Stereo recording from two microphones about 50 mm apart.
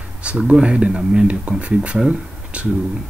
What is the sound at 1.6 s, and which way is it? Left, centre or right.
Speech, right.